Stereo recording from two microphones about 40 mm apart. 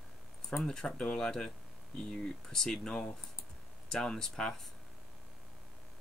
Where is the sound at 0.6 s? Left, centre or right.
Centre.